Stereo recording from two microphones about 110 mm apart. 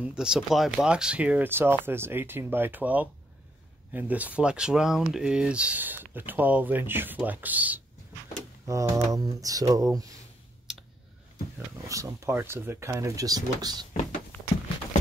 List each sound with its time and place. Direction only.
0.0 s speech: 10° right (ahead or behind)
8.6 s speech: 30° right (ahead or behind)
10.7 s clicking: 5° right (ahead or behind)
11.9 s speech: 30° right (ahead or behind)
14.3 s a sound: 15° left (ahead or behind)